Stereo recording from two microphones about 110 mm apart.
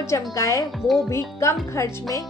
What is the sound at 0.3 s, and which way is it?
Speech, 30° left (ahead or behind).